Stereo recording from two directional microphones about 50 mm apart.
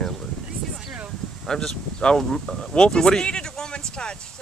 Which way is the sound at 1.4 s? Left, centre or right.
Centre.